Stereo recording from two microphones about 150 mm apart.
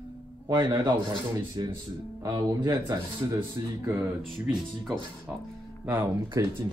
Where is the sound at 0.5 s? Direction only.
25° right (ahead or behind).